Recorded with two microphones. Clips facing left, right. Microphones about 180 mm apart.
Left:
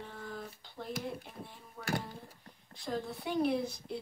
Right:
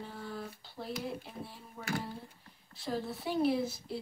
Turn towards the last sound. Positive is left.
turn(degrees=-5)  # may be behind; listen again after turning